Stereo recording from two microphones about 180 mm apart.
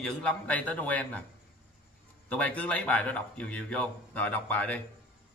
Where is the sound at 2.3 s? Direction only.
5° left (ahead or behind).